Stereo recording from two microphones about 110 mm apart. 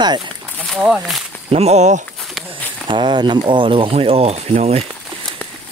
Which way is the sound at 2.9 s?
45° right (ahead or behind).